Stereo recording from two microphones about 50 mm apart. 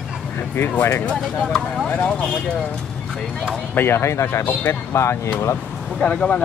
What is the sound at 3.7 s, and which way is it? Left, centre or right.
Speech, left.